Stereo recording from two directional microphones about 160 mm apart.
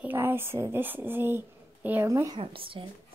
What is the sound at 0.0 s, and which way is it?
A woman's voice, 15° right (ahead or behind).